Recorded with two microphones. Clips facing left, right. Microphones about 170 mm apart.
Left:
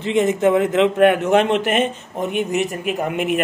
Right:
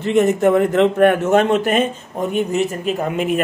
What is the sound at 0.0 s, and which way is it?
Speech, 20° left (ahead or behind).